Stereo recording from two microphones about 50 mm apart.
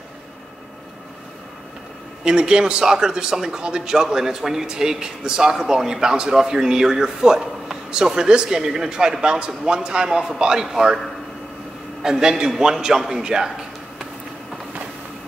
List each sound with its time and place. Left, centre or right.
2.2 s speech: centre
12.0 s a man's voice: centre